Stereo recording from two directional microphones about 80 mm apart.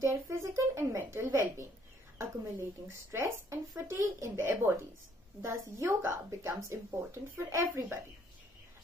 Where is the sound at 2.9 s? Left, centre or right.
Right.